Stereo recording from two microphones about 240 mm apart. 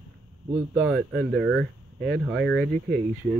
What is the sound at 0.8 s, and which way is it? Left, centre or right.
Speech, centre.